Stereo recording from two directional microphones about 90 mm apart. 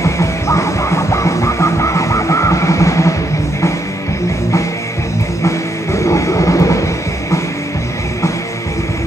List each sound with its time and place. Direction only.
0.0 s music: 35° left (ahead or behind)
5.9 s train: 35° left (ahead or behind)